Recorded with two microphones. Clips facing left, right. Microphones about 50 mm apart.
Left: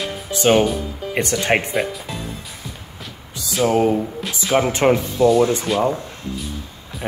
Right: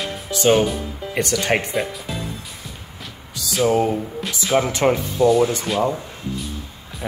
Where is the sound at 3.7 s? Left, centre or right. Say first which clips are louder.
Left 3 dB; centre.